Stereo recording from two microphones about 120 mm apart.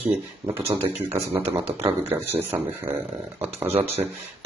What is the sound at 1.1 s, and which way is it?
Speech, 20° right (ahead or behind).